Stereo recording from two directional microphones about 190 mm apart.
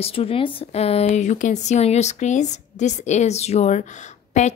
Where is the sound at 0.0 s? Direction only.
30° left (ahead or behind).